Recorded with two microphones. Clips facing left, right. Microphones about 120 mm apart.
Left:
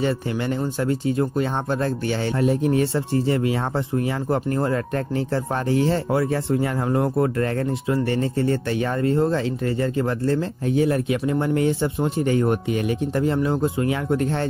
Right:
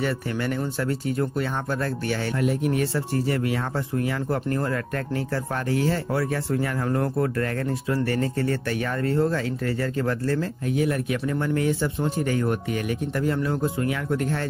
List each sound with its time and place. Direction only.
0.0 s speech: 25° left (ahead or behind)